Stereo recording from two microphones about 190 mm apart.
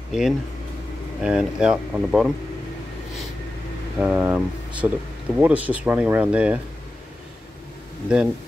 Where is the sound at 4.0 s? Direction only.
10° right (ahead or behind).